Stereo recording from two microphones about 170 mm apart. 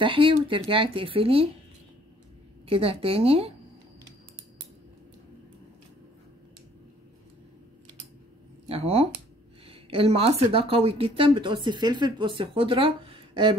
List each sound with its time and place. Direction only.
0.0 s speech: 30° right (ahead or behind)
2.6 s speech: 35° right (ahead or behind)
8.6 s speech: 35° right (ahead or behind)